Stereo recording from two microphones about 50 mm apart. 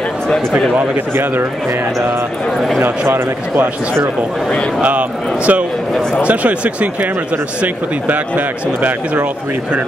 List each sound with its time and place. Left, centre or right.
0.9 s speech: right
4.8 s speech: right